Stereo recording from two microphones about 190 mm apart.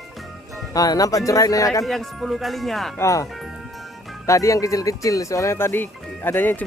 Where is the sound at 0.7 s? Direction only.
20° left (ahead or behind).